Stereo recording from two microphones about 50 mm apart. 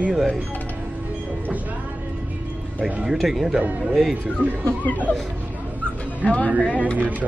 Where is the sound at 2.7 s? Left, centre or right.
Right.